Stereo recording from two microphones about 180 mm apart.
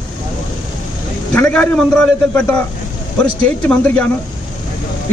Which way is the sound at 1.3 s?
10° left (ahead or behind).